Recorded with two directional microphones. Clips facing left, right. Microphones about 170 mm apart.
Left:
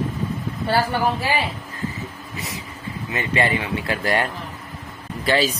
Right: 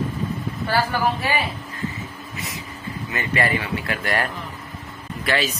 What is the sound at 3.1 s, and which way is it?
Speech, 25° left (ahead or behind).